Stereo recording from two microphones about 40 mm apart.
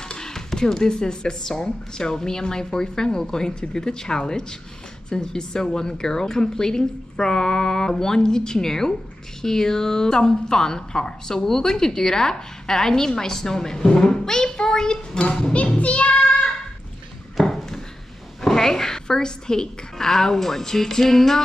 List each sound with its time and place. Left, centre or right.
0.1 s a woman's voice: centre
15.8 s child singing: left
18.4 s a woman's voice: centre